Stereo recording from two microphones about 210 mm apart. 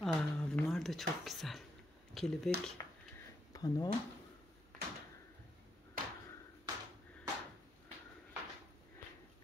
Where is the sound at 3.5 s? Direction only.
20° left (ahead or behind).